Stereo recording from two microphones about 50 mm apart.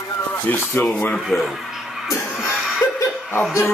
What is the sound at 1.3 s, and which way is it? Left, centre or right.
Speech, left.